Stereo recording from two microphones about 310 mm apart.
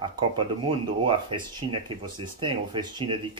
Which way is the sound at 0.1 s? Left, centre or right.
Centre.